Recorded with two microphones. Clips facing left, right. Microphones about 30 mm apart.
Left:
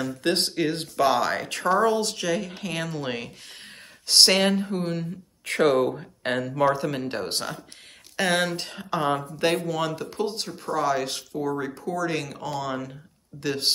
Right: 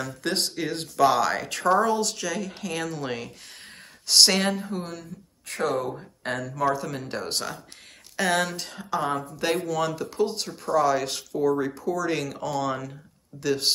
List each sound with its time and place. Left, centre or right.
0.0 s speech: left
2.0 s speech: centre
5.4 s speech: left
5.9 s speech: left
8.5 s speech: left
9.7 s speech: centre
11.7 s speech: centre
12.1 s speech: centre